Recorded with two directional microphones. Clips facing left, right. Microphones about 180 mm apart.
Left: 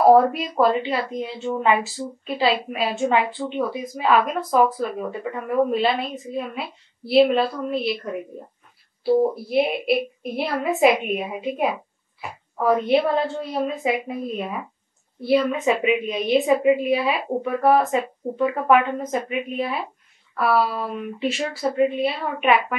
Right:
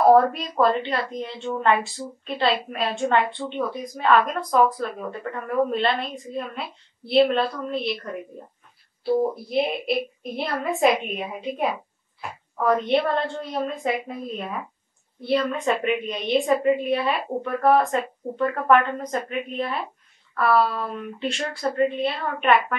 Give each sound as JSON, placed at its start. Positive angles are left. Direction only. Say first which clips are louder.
{"t": 0.0, "sound": "a woman's voice", "louder": "left 2 dB", "side_deg": 5}
{"t": 9.0, "sound": "speech", "louder": "left 3 dB", "side_deg": 20}
{"t": 9.3, "sound": "a woman's voice", "louder": "left 3 dB", "side_deg": 5}